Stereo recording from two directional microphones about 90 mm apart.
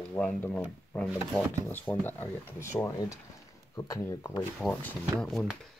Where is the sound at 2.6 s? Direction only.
35° left (ahead or behind).